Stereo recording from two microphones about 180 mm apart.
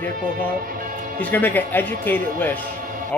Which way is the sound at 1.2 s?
10° left (ahead or behind).